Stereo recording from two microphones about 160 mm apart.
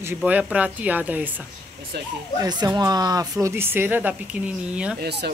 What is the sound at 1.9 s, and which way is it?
Speech, 90° right.